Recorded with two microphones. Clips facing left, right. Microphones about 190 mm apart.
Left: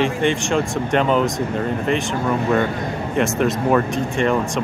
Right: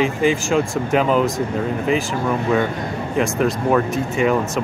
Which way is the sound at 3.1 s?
Centre (ahead or behind).